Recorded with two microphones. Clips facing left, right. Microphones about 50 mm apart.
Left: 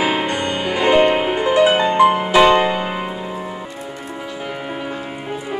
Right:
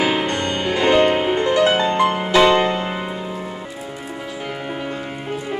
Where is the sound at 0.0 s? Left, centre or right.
Centre.